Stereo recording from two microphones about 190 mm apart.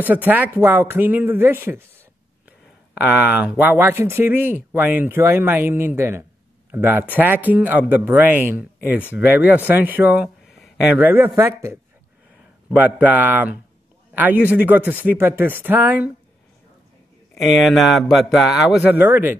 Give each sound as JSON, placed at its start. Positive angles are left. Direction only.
{"t": 0.0, "sound": "speech", "side_deg": -10}
{"t": 2.9, "sound": "speech", "side_deg": -5}
{"t": 11.1, "sound": "speech", "side_deg": -10}
{"t": 17.4, "sound": "speech", "side_deg": 0}